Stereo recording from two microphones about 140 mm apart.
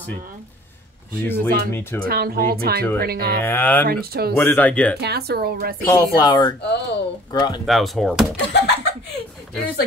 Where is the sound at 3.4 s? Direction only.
15° left (ahead or behind).